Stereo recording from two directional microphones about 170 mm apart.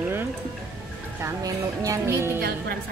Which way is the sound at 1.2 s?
20° right (ahead or behind).